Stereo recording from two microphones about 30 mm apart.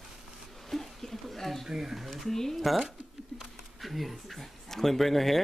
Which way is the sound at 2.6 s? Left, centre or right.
Centre.